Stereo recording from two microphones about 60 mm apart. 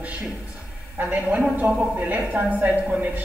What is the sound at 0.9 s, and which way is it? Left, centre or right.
A woman's voice, right.